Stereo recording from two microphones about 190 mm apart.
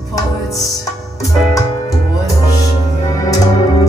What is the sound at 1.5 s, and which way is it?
Music, 15° left (ahead or behind).